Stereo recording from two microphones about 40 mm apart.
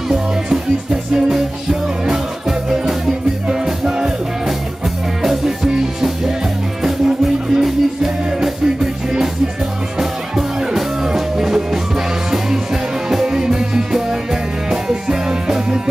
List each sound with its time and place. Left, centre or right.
1.1 s music: centre
3.4 s music: centre
9.9 s music: centre
13.1 s music: centre